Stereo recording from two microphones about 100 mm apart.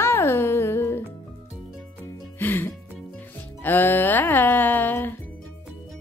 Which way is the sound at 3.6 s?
20° left (ahead or behind).